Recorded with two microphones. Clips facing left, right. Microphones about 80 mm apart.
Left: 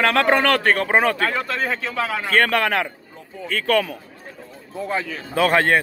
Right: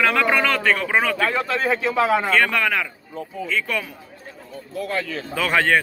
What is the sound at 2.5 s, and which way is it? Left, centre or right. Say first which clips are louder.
A man's voice: left 2 dB; left.